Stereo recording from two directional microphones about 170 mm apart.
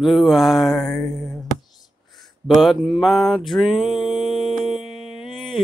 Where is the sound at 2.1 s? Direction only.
Centre (ahead or behind).